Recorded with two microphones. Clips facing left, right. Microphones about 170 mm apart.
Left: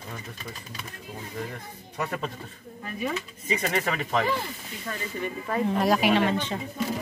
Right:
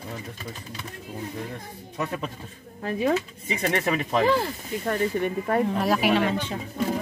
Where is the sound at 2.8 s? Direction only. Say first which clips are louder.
Right 7 dB; 90° right.